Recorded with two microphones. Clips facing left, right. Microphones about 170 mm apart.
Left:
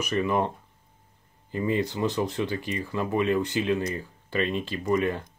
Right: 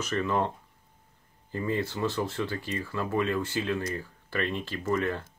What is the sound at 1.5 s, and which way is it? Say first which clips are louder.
Speech: left 4 dB; 15° left (ahead or behind).